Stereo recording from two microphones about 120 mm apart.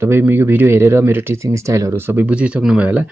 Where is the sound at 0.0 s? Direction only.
20° right (ahead or behind).